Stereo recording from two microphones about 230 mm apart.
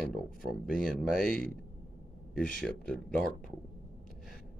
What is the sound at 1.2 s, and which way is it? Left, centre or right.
Speech, left.